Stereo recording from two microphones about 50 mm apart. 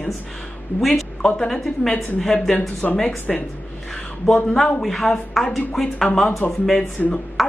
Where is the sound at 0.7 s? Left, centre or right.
Centre.